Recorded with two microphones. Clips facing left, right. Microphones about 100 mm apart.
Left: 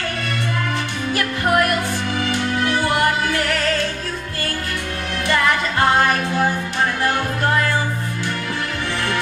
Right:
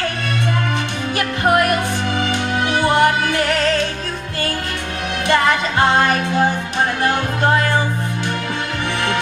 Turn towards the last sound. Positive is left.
turn(degrees=-20)  # may be behind; listen again after turning